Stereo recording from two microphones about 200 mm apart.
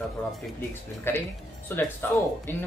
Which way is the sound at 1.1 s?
10° left (ahead or behind).